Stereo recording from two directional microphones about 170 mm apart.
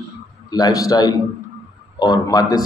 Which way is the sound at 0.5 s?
20° left (ahead or behind).